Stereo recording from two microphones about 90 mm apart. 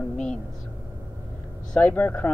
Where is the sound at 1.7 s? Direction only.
20° left (ahead or behind).